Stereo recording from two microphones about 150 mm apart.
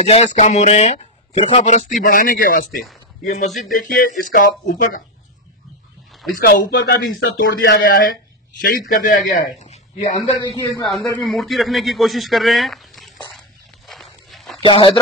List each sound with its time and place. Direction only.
0.0 s speech: 45° left (ahead or behind)
2.0 s speech: 70° left (ahead or behind)
3.8 s speech: 65° left (ahead or behind)
6.3 s a man's voice: 85° left
9.3 s speech: 50° left (ahead or behind)
10.4 s a man's voice: 25° left (ahead or behind)
10.9 s speech: centre (ahead or behind)
13.8 s walk: centre (ahead or behind)
14.6 s speech: 35° left (ahead or behind)